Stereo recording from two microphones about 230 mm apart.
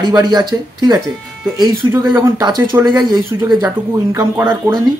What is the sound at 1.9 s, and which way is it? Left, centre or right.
A man's voice, centre.